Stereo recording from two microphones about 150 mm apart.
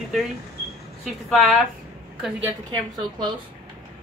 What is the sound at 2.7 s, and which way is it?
Speech, 30° right (ahead or behind).